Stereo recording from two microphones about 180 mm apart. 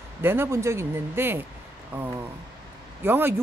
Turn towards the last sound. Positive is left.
turn(degrees=-10)  # may be behind; listen again after turning